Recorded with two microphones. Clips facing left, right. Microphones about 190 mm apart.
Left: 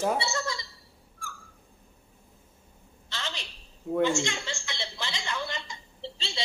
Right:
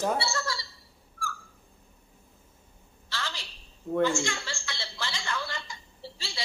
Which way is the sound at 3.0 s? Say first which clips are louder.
Even; 20° left (ahead or behind).